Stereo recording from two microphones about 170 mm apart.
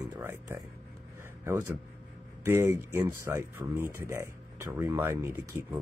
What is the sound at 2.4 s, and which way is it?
Speech, 15° right (ahead or behind).